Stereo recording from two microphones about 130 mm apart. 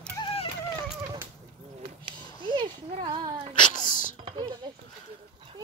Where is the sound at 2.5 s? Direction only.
45° right (ahead or behind).